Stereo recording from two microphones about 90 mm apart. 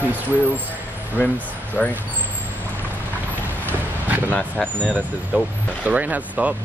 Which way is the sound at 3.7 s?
20° right (ahead or behind).